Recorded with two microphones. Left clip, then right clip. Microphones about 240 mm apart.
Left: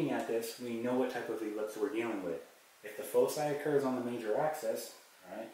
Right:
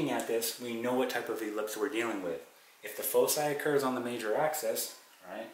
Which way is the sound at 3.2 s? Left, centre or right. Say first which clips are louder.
Right 2 dB; centre.